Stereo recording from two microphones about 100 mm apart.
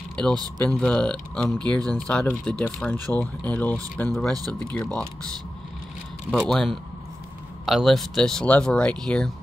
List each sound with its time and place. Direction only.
0.1 s a sound: 10° left (ahead or behind)
0.7 s speech: 5° left (ahead or behind)
4.1 s speech: 5° left (ahead or behind)
6.3 s speech: 5° left (ahead or behind)